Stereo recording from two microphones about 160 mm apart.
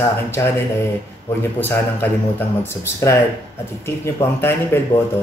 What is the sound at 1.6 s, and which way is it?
Speech, 15° left (ahead or behind).